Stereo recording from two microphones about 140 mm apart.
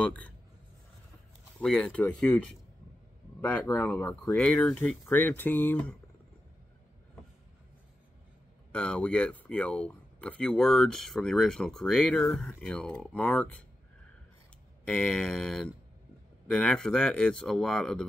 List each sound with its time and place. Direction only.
0.0 s speech: 10° left (ahead or behind)
1.6 s speech: 5° left (ahead or behind)
8.7 s speech: 5° left (ahead or behind)
14.9 s speech: 5° left (ahead or behind)